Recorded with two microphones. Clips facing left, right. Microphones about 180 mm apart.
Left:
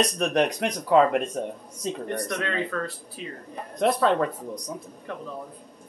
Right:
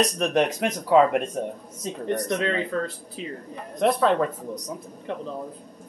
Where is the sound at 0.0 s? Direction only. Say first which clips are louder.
Right 1 dB; centre (ahead or behind).